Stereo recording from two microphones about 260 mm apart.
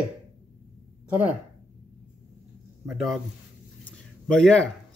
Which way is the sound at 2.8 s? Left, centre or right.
Centre.